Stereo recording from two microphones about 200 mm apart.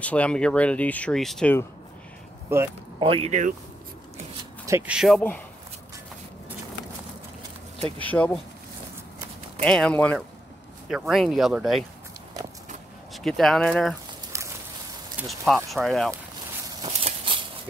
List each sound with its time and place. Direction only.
0.0 s speech: 5° left (ahead or behind)
2.5 s speech: 10° right (ahead or behind)
3.0 s speech: 30° right (ahead or behind)
4.6 s speech: 10° right (ahead or behind)
8.0 s speech: 5° left (ahead or behind)
9.6 s speech: 5° left (ahead or behind)
13.1 s speech: centre (ahead or behind)
15.1 s speech: centre (ahead or behind)
16.6 s a sound: 25° right (ahead or behind)